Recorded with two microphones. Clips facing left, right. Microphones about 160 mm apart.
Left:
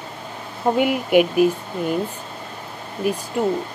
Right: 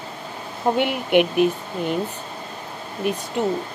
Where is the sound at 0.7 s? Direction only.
5° left (ahead or behind).